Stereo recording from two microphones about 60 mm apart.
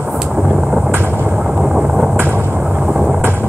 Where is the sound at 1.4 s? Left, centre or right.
Centre.